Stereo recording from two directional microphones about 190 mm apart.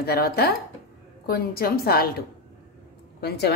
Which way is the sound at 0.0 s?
55° left (ahead or behind).